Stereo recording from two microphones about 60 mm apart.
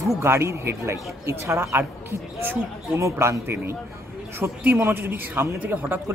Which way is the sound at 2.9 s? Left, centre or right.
Right.